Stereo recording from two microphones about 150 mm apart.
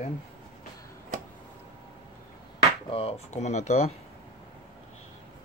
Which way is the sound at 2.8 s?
40° left (ahead or behind).